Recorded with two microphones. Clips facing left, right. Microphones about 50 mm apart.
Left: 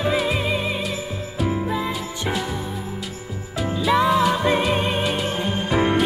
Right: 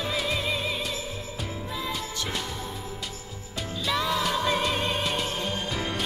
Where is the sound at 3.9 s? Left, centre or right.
Left.